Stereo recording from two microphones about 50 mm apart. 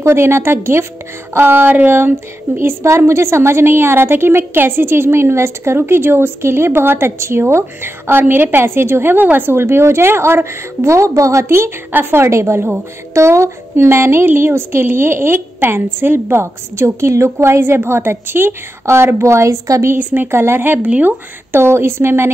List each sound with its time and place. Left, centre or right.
0.0 s a woman's voice: right
1.4 s a woman's voice: right
3.1 s a woman's voice: right
9.5 s a woman's voice: right
11.4 s a woman's voice: right
15.3 s a woman's voice: right
20.0 s speech: right
20.2 s a woman's voice: right
20.8 s speech: right
21.5 s a woman's voice: right